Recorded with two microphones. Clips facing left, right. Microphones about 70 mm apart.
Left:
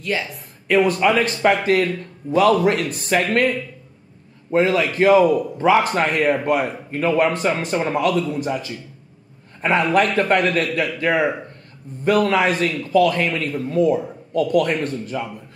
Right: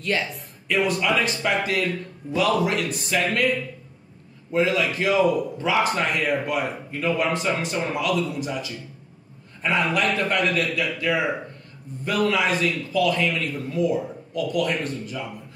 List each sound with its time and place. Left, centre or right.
0.0 s speech: centre
0.7 s a man's voice: left